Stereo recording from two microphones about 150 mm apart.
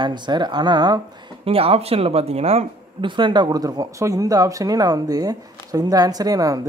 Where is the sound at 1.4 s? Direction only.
40° right (ahead or behind).